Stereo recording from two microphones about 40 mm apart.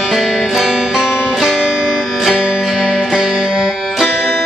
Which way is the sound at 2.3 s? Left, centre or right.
Centre.